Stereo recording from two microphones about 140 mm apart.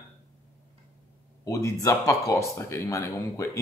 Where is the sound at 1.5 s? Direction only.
20° left (ahead or behind).